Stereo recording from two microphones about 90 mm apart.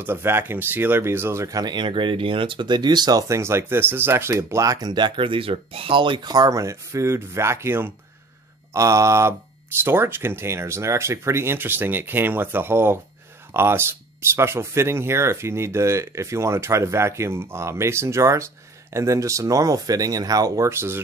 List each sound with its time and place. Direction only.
0.0 s speech: 25° right (ahead or behind)
8.7 s speech: 35° right (ahead or behind)